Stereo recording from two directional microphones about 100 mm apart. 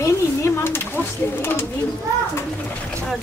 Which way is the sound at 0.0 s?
25° left (ahead or behind).